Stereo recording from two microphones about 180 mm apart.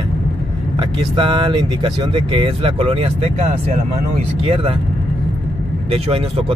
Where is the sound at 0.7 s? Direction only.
30° right (ahead or behind).